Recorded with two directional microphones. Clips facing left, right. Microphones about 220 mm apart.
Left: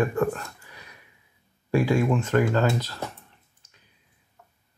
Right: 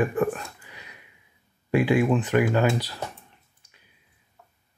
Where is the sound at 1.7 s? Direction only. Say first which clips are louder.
Right 1 dB; 15° right (ahead or behind).